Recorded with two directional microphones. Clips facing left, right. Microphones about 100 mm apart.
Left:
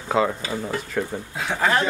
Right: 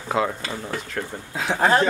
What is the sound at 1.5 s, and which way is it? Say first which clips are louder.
Speech: right 3 dB; 35° right (ahead or behind).